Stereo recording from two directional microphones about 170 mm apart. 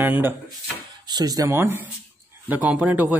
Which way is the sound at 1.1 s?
20° right (ahead or behind).